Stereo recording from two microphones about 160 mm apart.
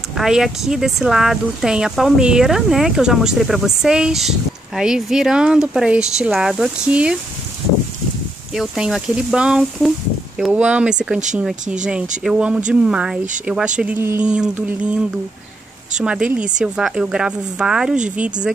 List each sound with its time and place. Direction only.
0.1 s speech: 5° right (ahead or behind)
8.5 s speech: 5° right (ahead or behind)
12.2 s speech: 5° right (ahead or behind)
16.0 s speech: 5° right (ahead or behind)